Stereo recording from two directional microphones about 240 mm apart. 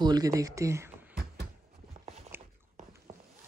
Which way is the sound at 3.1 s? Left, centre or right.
Right.